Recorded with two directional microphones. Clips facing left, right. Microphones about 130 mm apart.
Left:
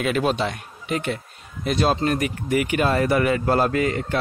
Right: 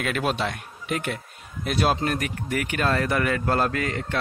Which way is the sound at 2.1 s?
5° left (ahead or behind).